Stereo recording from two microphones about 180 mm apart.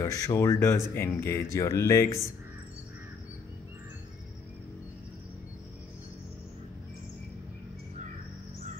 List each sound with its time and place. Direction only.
0.0 s speech: 20° left (ahead or behind)